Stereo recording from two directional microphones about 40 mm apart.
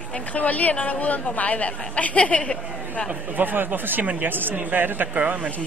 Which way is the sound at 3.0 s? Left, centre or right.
Right.